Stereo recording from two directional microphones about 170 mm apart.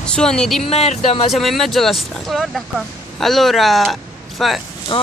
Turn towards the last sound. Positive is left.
turn(degrees=30)  # may be behind; listen again after turning